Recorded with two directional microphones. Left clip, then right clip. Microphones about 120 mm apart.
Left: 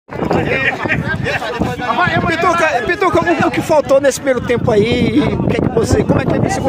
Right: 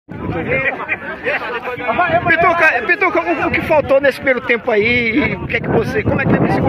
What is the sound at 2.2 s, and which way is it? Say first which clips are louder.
Speech: right 2 dB; 25° left (ahead or behind).